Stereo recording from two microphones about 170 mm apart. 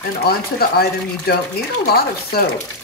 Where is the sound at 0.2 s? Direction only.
65° left (ahead or behind).